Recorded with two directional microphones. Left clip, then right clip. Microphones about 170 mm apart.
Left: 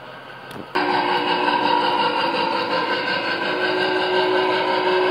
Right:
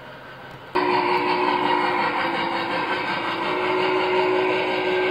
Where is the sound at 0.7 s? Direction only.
50° left (ahead or behind).